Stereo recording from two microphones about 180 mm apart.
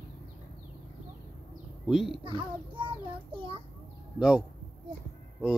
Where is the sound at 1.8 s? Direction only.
Centre (ahead or behind).